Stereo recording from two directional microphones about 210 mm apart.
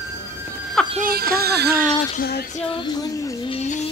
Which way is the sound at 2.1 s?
50° left (ahead or behind).